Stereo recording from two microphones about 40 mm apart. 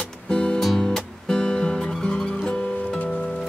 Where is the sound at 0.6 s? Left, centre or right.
Centre.